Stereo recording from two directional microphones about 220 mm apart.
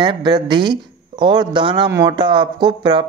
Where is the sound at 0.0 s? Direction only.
20° right (ahead or behind).